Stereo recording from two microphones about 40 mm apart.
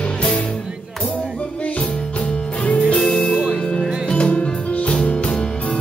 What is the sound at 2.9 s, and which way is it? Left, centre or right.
Music, centre.